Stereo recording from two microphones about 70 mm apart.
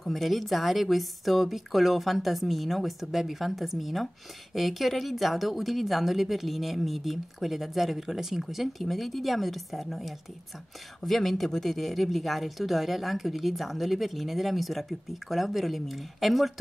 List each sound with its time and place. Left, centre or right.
0.0 s speech: centre